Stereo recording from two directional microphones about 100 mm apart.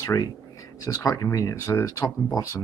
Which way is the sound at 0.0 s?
35° left (ahead or behind).